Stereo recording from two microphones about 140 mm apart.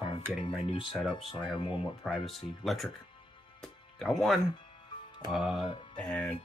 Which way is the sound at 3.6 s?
Centre (ahead or behind).